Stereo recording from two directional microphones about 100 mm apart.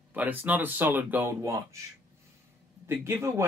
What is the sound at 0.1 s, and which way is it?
Speech, 15° right (ahead or behind).